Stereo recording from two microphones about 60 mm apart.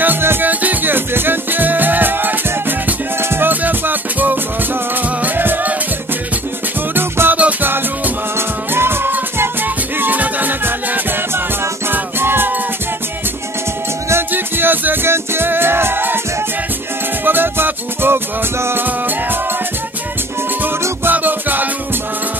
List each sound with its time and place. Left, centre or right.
0.0 s music: right
7.0 s music: right
8.4 s music: right
14.3 s music: right
17.2 s music: right
21.0 s music: right